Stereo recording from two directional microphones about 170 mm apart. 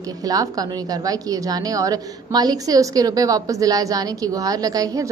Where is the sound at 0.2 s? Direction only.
20° right (ahead or behind).